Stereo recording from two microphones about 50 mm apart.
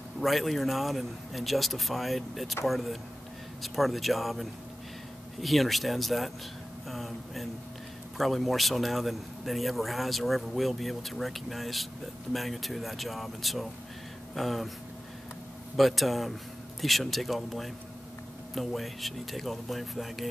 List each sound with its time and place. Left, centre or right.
0.2 s a man's voice: centre
15.7 s a man's voice: centre